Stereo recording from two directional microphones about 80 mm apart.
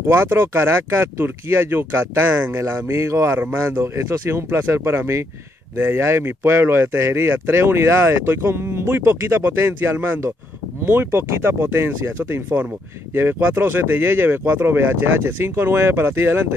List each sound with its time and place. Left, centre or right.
0.1 s speech: right